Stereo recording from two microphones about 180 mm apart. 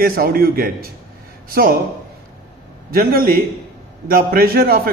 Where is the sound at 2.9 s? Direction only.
55° right (ahead or behind).